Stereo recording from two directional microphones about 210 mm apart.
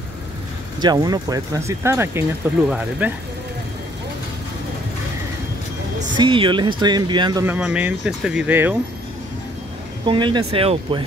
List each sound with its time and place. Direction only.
0.7 s speech: 20° right (ahead or behind)
6.1 s speech: 25° right (ahead or behind)
7.5 s speech: 5° right (ahead or behind)
10.0 s speech: 20° right (ahead or behind)